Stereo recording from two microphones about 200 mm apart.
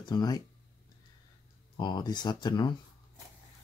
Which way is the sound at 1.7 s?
20° left (ahead or behind).